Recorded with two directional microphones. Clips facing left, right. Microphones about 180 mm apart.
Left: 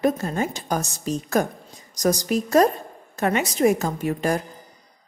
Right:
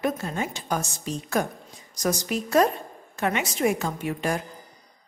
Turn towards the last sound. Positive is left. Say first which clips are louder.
# left 4 dB
turn(degrees=40)  # may be behind; listen again after turning